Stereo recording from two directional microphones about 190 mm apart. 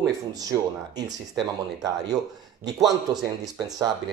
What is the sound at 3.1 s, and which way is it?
Speech, 20° right (ahead or behind).